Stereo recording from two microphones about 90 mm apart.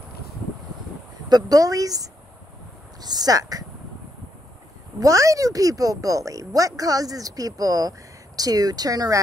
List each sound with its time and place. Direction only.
1.3 s speech: 40° right (ahead or behind)
5.0 s speech: 35° right (ahead or behind)